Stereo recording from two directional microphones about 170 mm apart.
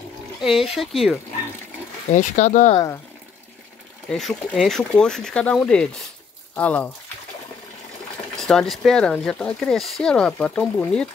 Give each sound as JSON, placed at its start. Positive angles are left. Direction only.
{"t": 0.4, "sound": "speech", "side_deg": 0}
{"t": 2.0, "sound": "speech", "side_deg": 45}
{"t": 4.1, "sound": "speech", "side_deg": 5}
{"t": 8.4, "sound": "speech", "side_deg": 5}